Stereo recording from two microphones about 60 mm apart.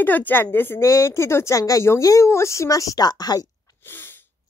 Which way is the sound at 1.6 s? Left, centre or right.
Left.